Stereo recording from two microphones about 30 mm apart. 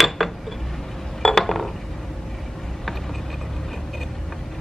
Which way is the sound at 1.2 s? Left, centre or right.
Centre.